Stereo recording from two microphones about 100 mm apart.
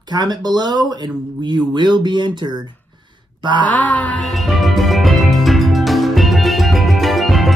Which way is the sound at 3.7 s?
15° left (ahead or behind).